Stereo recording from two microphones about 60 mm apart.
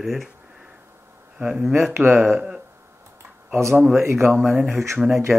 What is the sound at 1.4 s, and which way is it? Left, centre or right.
Speech, centre.